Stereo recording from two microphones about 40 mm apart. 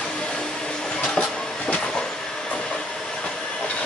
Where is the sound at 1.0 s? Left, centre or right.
Left.